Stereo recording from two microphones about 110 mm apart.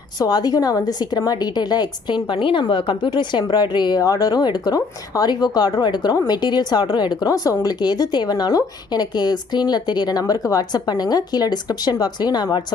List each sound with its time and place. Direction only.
0.2 s a woman's voice: 35° left (ahead or behind)